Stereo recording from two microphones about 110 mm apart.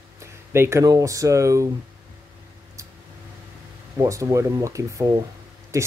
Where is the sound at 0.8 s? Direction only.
30° right (ahead or behind).